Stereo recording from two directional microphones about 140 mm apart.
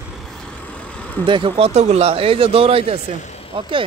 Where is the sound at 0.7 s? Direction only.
10° left (ahead or behind).